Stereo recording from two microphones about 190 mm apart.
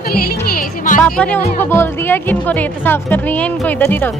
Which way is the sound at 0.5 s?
45° left (ahead or behind).